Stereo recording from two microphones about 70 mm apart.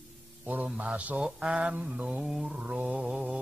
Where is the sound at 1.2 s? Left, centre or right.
Centre.